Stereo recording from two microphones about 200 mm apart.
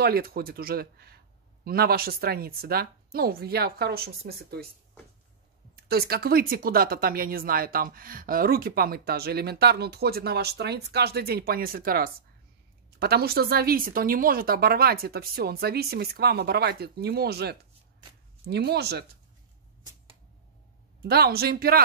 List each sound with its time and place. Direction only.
0.0 s speech: 50° right (ahead or behind)
5.9 s speech: 50° right (ahead or behind)
21.0 s speech: 50° right (ahead or behind)